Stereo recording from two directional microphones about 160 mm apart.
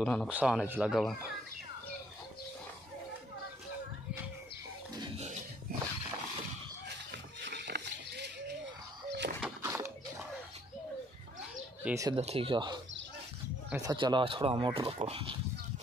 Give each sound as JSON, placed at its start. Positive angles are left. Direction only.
{"t": 0.0, "sound": "speech", "side_deg": 5}
{"t": 0.3, "sound": "speech", "side_deg": -5}
{"t": 7.1, "sound": "a sound", "side_deg": -90}
{"t": 9.6, "sound": "a sound", "side_deg": -15}
{"t": 11.8, "sound": "speech", "side_deg": -20}
{"t": 12.2, "sound": "speech", "side_deg": -35}